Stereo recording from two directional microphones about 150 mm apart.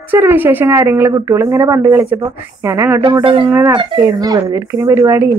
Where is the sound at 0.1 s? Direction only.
15° right (ahead or behind).